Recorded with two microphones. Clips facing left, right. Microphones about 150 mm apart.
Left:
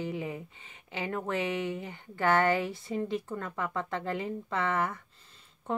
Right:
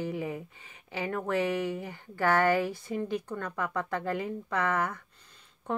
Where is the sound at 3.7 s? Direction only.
20° left (ahead or behind).